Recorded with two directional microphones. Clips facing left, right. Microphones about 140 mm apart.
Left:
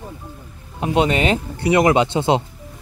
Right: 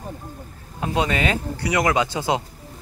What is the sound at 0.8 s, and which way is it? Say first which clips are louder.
Speech: left 5 dB; 25° left (ahead or behind).